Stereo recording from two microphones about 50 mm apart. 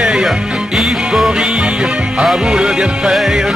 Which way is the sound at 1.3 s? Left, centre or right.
Centre.